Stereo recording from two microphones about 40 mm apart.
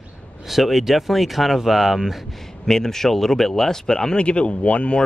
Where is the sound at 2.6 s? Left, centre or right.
Centre.